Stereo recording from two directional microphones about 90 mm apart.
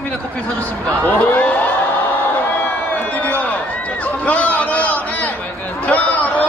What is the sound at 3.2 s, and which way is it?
Run, 15° left (ahead or behind).